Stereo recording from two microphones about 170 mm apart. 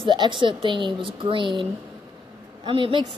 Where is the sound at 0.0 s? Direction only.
30° right (ahead or behind).